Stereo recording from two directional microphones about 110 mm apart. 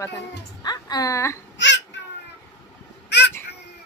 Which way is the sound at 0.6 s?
40° left (ahead or behind).